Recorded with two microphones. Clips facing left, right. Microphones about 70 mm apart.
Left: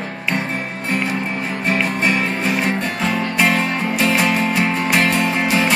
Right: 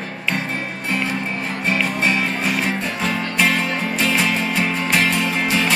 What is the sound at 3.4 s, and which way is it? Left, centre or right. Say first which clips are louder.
Music: left 1 dB; centre.